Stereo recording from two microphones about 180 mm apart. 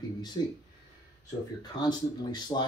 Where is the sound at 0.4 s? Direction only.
20° left (ahead or behind).